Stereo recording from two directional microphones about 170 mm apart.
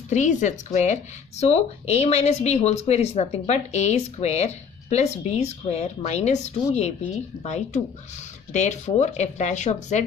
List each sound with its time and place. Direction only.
0.1 s speech: 45° left (ahead or behind)